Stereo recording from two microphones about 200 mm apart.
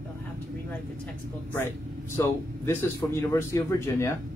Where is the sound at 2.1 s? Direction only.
15° left (ahead or behind).